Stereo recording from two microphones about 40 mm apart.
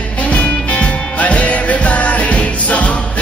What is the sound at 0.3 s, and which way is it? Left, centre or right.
Music, left.